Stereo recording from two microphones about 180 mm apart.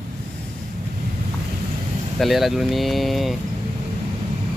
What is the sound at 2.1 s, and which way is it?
Speech, centre (ahead or behind).